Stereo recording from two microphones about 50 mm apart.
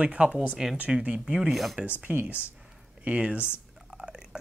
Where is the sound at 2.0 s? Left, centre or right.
Right.